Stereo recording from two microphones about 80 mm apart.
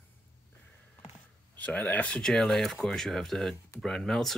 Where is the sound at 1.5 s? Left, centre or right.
Centre.